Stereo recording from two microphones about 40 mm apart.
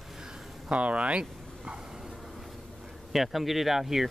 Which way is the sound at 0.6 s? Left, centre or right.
Right.